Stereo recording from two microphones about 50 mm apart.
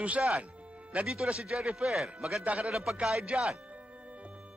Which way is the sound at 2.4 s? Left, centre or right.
Right.